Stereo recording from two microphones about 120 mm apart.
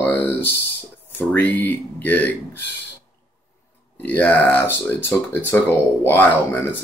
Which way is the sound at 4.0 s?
15° left (ahead or behind).